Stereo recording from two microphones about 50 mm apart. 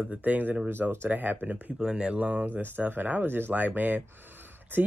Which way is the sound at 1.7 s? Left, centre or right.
Centre.